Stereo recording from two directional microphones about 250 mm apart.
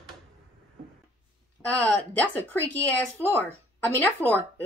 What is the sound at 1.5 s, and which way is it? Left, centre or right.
Speech, centre.